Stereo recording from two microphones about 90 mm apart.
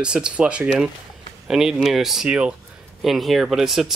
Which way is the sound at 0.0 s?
10° right (ahead or behind).